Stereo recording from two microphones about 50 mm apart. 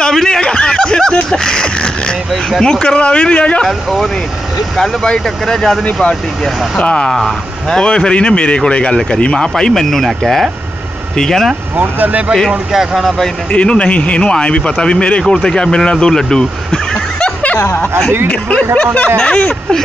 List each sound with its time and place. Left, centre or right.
0.0 s snicker: centre
0.4 s speech: centre
3.6 s speech: centre
6.8 s speech: left
7.1 s speech: centre
7.7 s speech: centre
11.7 s speech: right
12.4 s speech: centre
13.5 s speech: left
18.3 s speech: left